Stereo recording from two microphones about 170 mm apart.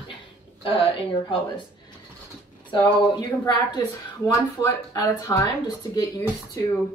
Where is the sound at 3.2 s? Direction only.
25° left (ahead or behind).